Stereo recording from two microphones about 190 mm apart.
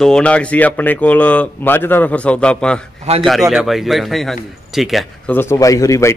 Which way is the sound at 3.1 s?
35° right (ahead or behind).